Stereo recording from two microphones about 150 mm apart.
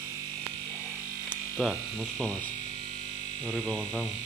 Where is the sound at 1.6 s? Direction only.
Centre (ahead or behind).